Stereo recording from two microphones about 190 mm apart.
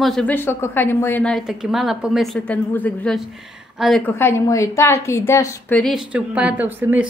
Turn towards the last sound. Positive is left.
turn(degrees=-10)  # may be behind; listen again after turning